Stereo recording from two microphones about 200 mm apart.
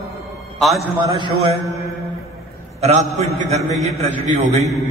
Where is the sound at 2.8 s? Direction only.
35° right (ahead or behind).